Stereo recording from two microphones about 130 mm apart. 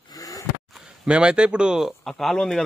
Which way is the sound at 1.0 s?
5° right (ahead or behind).